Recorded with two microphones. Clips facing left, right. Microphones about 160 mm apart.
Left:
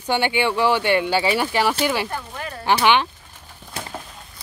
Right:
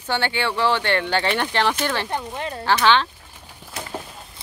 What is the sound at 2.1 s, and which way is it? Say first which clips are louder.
Speech: right 3 dB; 25° right (ahead or behind).